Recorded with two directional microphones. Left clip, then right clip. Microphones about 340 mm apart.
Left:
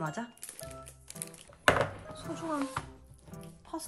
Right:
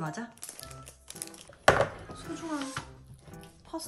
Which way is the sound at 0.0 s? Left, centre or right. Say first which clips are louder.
Even; centre.